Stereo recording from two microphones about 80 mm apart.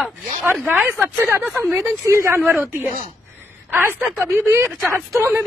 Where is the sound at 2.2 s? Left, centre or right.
Right.